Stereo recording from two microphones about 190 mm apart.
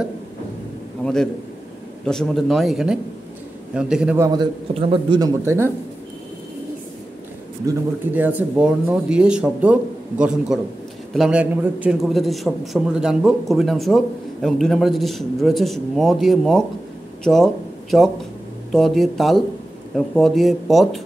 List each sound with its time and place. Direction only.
1.0 s a man's voice: 5° left (ahead or behind)
4.3 s a man's voice: 25° right (ahead or behind)
7.6 s a man's voice: 10° right (ahead or behind)
18.7 s a man's voice: centre (ahead or behind)